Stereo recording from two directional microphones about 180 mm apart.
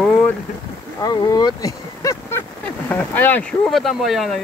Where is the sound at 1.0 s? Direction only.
20° left (ahead or behind).